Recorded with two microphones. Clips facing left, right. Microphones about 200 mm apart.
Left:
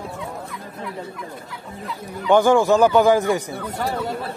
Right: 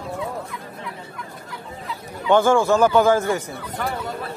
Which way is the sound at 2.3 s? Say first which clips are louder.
Left 1 dB; 15° left (ahead or behind).